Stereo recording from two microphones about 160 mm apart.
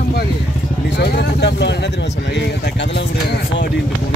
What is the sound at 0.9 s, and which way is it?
Vehicle, 90° left.